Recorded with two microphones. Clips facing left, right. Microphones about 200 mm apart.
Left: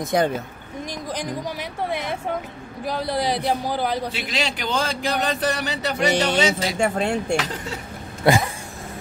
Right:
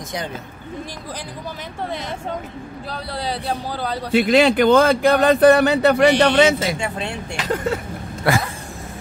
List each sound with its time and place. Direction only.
0.1 s speech: 55° left (ahead or behind)
1.9 s a man's voice: 15° left (ahead or behind)
4.1 s a man's voice: 55° right (ahead or behind)
6.8 s speech: 45° left (ahead or behind)
7.5 s a man's voice: 55° right (ahead or behind)